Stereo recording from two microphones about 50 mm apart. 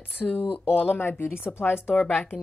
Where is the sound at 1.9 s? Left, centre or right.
Left.